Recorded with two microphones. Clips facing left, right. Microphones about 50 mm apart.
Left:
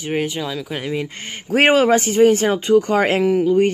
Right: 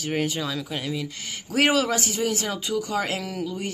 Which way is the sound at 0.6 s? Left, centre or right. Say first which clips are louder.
Left 6 dB; left.